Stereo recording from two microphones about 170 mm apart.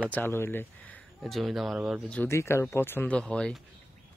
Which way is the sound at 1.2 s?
Centre (ahead or behind).